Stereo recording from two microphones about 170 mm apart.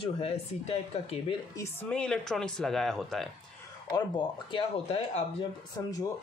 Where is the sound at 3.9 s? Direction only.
30° left (ahead or behind).